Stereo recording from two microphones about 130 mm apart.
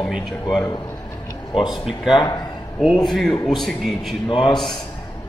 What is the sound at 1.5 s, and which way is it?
Speech, 35° left (ahead or behind).